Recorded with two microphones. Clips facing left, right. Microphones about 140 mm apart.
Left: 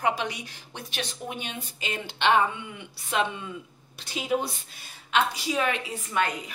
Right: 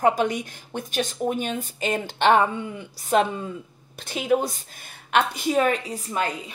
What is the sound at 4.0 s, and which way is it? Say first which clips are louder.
A woman's voice: right 5 dB; 50° right (ahead or behind).